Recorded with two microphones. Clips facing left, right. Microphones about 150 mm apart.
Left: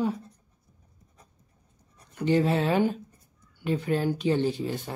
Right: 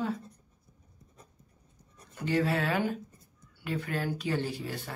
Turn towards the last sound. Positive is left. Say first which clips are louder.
# left 8 dB
turn(degrees=20)  # may be behind; listen again after turning